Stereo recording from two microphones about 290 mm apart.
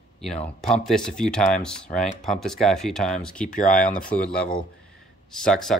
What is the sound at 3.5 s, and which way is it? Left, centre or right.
Speech, left.